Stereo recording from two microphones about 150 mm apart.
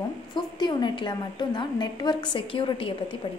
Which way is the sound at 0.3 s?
30° left (ahead or behind).